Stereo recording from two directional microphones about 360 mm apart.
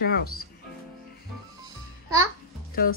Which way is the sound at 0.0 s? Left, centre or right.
Left.